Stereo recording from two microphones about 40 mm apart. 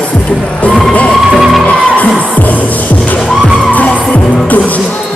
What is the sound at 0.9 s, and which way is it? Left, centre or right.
Music, left.